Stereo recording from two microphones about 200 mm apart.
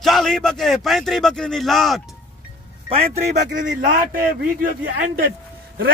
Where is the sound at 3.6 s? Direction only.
50° right (ahead or behind).